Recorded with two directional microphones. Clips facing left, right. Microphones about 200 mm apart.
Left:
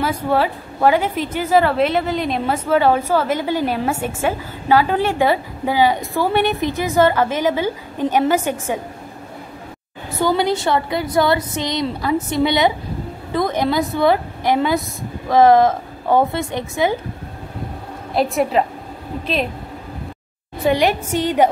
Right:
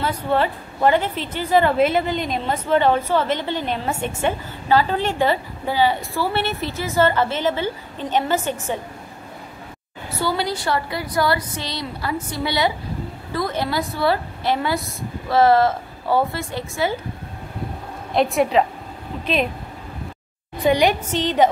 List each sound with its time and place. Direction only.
0.0 s a woman's voice: 10° left (ahead or behind)
10.2 s a woman's voice: 20° left (ahead or behind)
18.1 s a woman's voice: centre (ahead or behind)
20.7 s a woman's voice: 5° left (ahead or behind)